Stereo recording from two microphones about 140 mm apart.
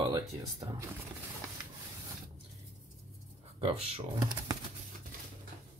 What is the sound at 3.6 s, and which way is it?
Speech, 45° right (ahead or behind).